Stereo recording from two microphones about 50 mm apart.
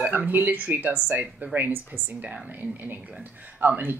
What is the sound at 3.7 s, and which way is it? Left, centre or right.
Speech, right.